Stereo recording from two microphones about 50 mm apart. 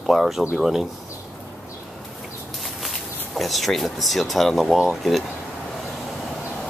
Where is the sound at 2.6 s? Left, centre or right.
Centre.